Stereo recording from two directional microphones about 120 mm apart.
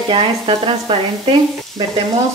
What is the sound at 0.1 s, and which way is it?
Speech, 45° right (ahead or behind).